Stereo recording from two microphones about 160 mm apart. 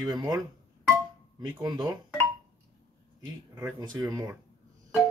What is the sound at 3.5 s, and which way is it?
Speech, 25° right (ahead or behind).